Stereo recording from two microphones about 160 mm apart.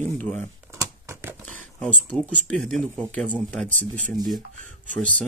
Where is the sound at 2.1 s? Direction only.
10° left (ahead or behind).